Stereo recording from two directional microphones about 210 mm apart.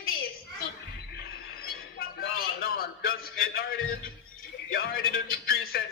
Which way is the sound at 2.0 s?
45° left (ahead or behind).